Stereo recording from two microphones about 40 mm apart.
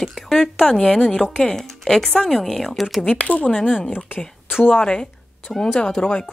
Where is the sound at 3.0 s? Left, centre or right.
Left.